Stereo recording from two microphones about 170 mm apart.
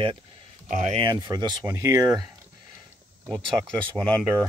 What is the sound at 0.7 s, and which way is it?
Speech, 50° right (ahead or behind).